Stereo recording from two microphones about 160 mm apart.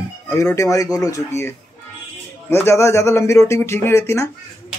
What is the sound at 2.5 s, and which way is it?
Speech, 15° left (ahead or behind).